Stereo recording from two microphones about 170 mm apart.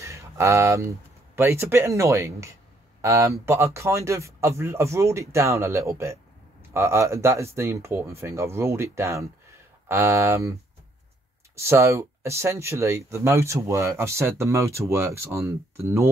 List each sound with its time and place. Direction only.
0.0 s speech: 15° right (ahead or behind)
11.5 s speech: 15° right (ahead or behind)